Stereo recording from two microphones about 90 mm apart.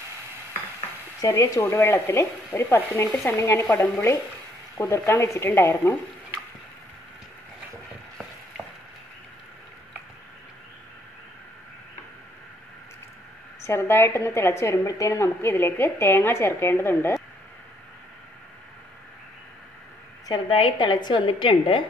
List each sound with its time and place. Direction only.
1.3 s a woman's voice: 35° left (ahead or behind)
3.7 s speech: 20° left (ahead or behind)
4.7 s a woman's voice: 30° left (ahead or behind)
13.6 s a woman's voice: 30° left (ahead or behind)
20.4 s a woman's voice: 90° left
20.8 s a woman's voice: 55° left (ahead or behind); by 21.8 s 70° left (ahead or behind)